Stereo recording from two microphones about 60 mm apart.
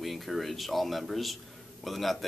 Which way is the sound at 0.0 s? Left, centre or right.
Centre.